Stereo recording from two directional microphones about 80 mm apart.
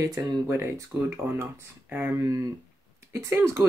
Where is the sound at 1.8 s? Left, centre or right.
Right.